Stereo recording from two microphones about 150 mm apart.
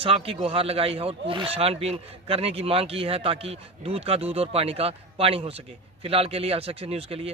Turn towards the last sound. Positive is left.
turn(degrees=-40)  # may be behind; listen again after turning